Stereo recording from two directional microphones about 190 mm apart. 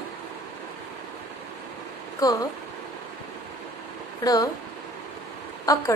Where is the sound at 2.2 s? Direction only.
20° left (ahead or behind).